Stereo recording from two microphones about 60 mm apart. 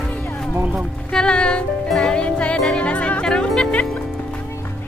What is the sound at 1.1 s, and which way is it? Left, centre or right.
Music, centre.